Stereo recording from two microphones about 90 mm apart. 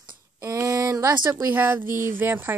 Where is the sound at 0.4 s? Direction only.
35° right (ahead or behind).